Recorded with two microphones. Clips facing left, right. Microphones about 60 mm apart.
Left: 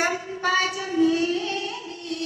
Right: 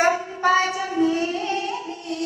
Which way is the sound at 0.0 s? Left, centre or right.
Right.